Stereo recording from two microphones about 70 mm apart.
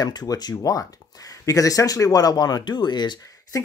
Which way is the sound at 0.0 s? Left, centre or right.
Left.